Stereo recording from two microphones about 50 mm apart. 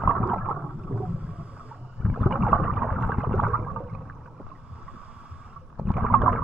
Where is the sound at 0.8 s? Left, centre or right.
Right.